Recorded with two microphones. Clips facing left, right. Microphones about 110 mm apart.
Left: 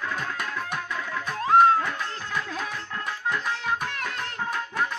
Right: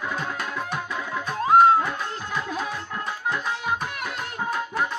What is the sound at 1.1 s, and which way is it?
Music, 15° right (ahead or behind).